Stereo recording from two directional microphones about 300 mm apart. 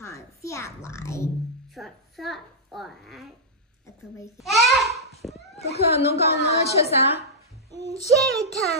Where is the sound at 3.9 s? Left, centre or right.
Centre.